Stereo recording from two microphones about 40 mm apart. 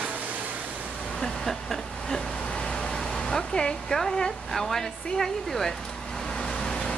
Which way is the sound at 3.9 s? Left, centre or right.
Centre.